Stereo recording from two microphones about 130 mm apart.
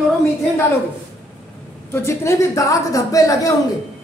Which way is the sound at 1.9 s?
20° left (ahead or behind).